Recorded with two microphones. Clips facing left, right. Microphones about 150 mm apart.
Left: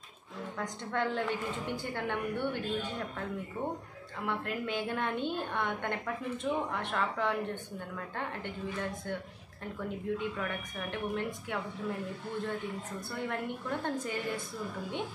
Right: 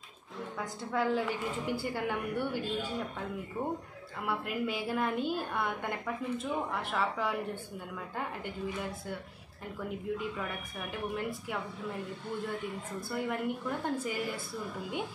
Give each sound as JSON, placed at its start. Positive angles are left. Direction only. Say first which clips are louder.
{"t": 0.6, "sound": "a woman's voice", "louder": "right 1 dB", "side_deg": -5}
{"t": 4.3, "sound": "a woman's voice", "louder": "right 1 dB", "side_deg": -5}
{"t": 10.1, "sound": "a woman's voice", "louder": "left 1 dB", "side_deg": -5}
{"t": 13.1, "sound": "a woman's voice", "louder": "right 3 dB", "side_deg": -10}